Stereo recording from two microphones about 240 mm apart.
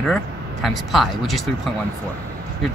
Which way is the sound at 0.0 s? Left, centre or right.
Centre.